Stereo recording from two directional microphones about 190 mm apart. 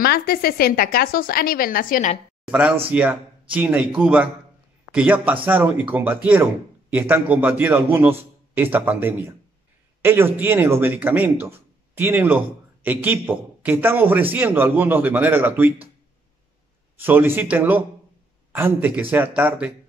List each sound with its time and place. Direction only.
0.0 s a woman's voice: 55° left (ahead or behind)
2.5 s a man's voice: 10° right (ahead or behind)
17.0 s a man's voice: 10° right (ahead or behind)